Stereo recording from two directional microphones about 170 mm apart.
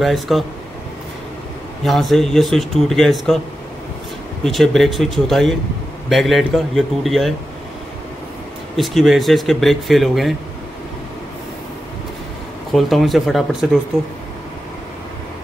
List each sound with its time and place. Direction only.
0.0 s speech: centre (ahead or behind)
1.9 s speech: centre (ahead or behind)
4.5 s speech: centre (ahead or behind)
8.7 s speech: centre (ahead or behind)
12.7 s speech: centre (ahead or behind)